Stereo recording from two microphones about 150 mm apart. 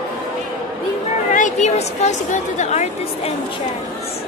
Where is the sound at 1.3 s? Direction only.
55° left (ahead or behind).